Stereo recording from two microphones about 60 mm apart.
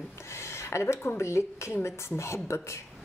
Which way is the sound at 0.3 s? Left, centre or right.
Left.